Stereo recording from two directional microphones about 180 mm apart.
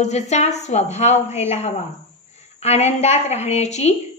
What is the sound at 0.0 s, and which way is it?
A woman's voice, 40° left (ahead or behind).